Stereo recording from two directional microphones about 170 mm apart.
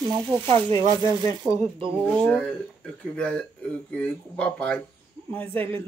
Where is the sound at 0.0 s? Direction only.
25° right (ahead or behind).